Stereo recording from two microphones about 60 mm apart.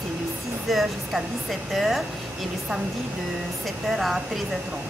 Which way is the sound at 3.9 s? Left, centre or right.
Centre.